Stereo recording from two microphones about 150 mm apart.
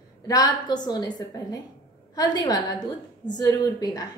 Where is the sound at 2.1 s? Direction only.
25° left (ahead or behind).